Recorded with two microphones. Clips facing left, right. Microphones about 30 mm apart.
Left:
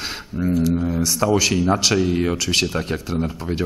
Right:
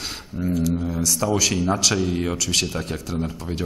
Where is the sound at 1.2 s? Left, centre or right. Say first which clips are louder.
Left 4 dB; centre.